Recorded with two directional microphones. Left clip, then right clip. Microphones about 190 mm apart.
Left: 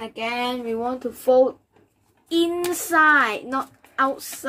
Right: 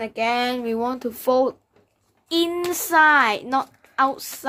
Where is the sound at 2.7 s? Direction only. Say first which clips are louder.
Right 1 dB; 45° right (ahead or behind).